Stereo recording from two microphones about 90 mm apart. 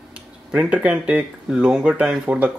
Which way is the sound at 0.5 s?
15° right (ahead or behind).